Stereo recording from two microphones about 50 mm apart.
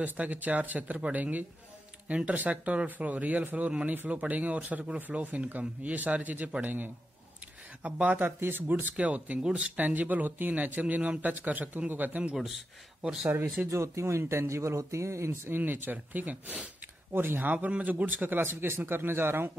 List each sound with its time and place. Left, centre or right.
0.0 s speech: right
8.4 s speech: right
8.8 s speech: right
12.4 s speech: centre
13.7 s speech: right
15.5 s speech: right
17.1 s speech: right